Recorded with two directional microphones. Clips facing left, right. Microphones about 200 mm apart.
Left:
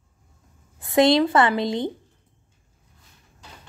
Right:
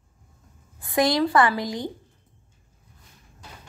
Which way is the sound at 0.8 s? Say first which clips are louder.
Left 4 dB; 25° left (ahead or behind).